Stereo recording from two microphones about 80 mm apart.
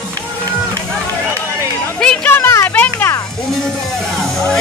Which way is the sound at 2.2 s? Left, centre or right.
Left.